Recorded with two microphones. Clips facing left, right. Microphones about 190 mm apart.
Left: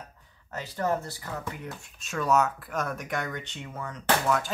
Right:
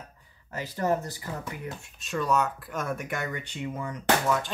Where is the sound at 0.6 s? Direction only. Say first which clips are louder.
Right 1 dB; 15° right (ahead or behind).